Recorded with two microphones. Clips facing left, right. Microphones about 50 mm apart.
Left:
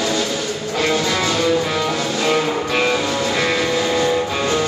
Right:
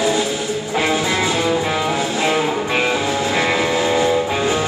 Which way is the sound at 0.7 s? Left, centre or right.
Centre.